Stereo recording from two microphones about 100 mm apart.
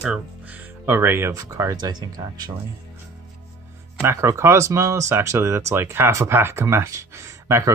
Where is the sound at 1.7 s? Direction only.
45° right (ahead or behind).